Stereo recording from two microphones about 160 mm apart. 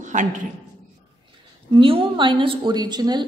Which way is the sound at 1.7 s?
35° right (ahead or behind).